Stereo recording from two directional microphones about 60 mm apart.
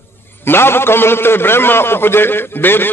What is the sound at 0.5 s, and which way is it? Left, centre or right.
A man's voice, left.